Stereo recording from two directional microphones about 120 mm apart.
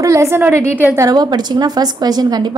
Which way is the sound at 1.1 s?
35° right (ahead or behind).